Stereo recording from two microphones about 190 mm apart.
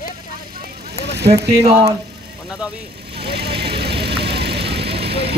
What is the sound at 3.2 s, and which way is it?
Vehicle, 60° right (ahead or behind).